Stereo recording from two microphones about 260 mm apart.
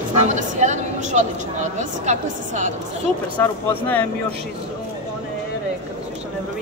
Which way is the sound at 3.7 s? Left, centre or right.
Centre.